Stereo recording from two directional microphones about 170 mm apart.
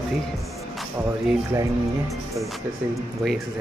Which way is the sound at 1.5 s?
20° right (ahead or behind).